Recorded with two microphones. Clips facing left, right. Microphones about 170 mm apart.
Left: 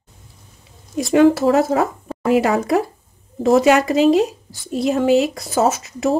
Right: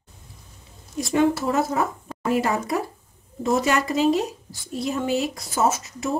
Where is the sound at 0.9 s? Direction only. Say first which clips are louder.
Left 7 dB; 85° left.